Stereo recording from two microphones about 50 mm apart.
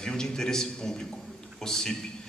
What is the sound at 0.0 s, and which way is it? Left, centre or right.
A man's voice, centre.